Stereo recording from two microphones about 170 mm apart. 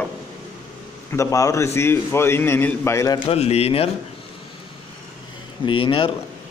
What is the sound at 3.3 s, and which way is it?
Speech, 35° left (ahead or behind).